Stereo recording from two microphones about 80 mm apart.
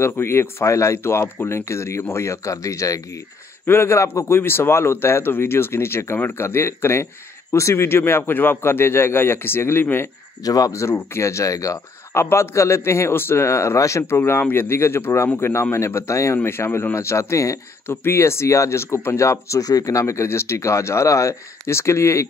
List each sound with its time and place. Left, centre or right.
0.2 s speech: left
3.6 s a man's voice: left
10.4 s a man's voice: left